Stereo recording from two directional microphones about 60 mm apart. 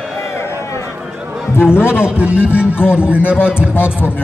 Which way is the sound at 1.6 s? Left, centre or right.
Left.